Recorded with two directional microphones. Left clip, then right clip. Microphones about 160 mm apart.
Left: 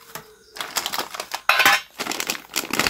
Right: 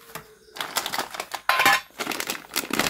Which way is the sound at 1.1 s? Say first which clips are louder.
Left 4 dB; 10° left (ahead or behind).